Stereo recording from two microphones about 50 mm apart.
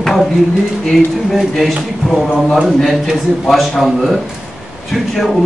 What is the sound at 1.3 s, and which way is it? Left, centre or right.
A man's voice, centre.